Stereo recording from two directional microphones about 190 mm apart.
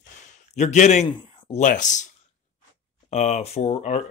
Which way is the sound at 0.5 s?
35° left (ahead or behind).